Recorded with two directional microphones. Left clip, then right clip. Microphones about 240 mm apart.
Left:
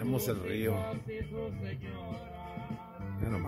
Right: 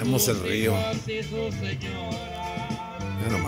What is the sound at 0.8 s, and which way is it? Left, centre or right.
Music, right.